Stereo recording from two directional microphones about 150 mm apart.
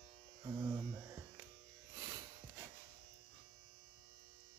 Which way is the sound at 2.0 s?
25° right (ahead or behind).